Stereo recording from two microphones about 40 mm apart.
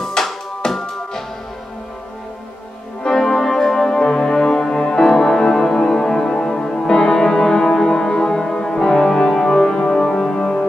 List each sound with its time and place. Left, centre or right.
0.0 s music: centre
3.0 s music: centre